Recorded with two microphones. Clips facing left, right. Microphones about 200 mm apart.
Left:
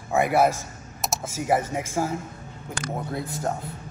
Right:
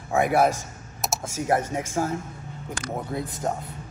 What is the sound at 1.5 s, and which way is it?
Speech, 5° left (ahead or behind).